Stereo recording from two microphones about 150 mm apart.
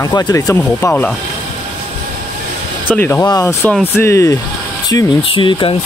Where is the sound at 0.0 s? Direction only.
25° left (ahead or behind).